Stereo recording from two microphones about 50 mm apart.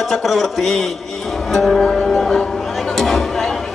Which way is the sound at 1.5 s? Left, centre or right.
Centre.